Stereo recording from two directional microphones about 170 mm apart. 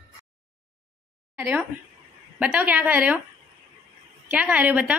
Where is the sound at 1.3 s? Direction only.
10° right (ahead or behind).